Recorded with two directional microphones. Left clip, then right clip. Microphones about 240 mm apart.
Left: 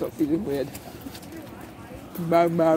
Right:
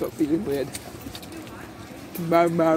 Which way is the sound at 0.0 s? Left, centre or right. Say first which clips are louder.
Right 1 dB; centre.